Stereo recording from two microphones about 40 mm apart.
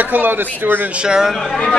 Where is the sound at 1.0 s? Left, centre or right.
Centre.